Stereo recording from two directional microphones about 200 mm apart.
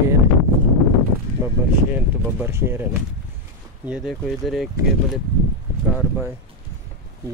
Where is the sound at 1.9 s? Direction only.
10° right (ahead or behind).